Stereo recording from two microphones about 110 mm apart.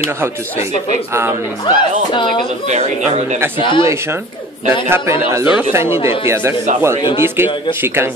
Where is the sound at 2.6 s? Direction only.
90° right.